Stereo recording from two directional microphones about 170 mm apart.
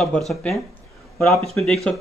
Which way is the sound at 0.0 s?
Centre (ahead or behind).